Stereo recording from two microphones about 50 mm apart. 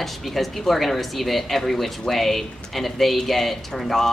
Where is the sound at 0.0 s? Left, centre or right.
Centre.